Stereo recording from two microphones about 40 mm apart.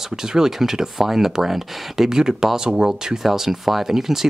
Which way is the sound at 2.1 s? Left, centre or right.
Centre.